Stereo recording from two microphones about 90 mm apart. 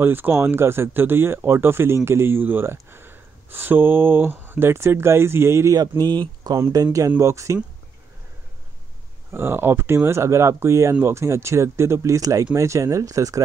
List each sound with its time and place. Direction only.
0.0 s speech: 25° right (ahead or behind)
5.8 s speech: 55° right (ahead or behind)
6.5 s speech: 40° right (ahead or behind)
9.3 s speech: 25° right (ahead or behind)